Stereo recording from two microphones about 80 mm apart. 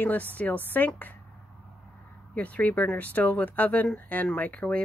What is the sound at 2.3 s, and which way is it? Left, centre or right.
Speech, centre.